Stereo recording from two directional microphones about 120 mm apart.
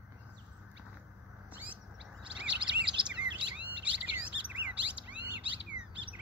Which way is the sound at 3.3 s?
10° right (ahead or behind).